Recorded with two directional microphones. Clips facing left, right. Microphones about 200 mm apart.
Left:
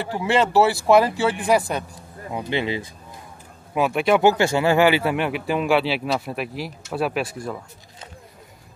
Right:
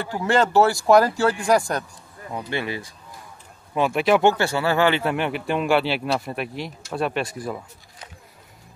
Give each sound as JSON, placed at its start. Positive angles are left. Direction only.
{"t": 0.0, "sound": "speech", "side_deg": 5}
{"t": 2.3, "sound": "speech", "side_deg": 20}
{"t": 3.7, "sound": "speech", "side_deg": 0}
{"t": 4.4, "sound": "speech", "side_deg": 15}